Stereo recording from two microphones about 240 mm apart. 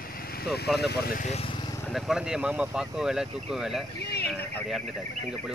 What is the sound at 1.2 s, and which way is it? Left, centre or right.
Speech, left.